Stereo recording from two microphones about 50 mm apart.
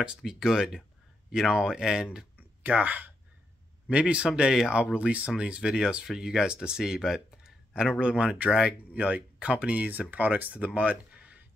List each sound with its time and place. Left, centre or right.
0.2 s speech: centre
2.6 s speech: right
3.9 s speech: right
7.2 s a sound: centre
8.0 s speech: centre
8.9 s speech: right
10.1 s speech: right
10.7 s a sound: right